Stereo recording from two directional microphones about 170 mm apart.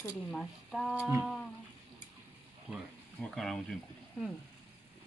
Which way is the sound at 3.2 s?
5° left (ahead or behind).